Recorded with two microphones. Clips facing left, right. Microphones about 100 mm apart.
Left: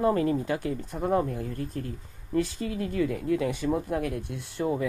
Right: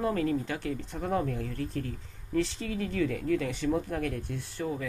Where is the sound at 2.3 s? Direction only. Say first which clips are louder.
Left 2 dB; 5° left (ahead or behind).